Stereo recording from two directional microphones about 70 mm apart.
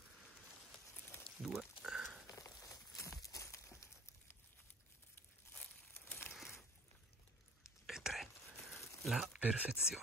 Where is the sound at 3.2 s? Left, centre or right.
Left.